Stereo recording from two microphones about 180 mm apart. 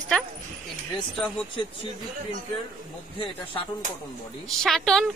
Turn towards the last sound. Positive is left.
turn(degrees=0)  # may be behind; listen again after turning